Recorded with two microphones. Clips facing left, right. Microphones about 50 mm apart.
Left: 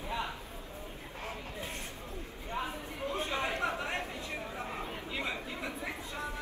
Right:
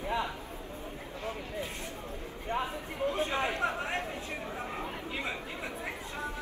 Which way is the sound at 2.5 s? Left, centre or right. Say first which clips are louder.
Right 3 dB; right.